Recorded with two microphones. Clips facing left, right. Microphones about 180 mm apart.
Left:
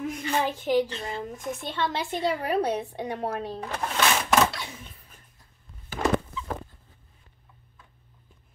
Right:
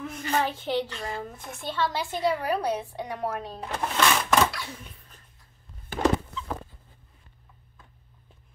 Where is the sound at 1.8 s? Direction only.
25° left (ahead or behind).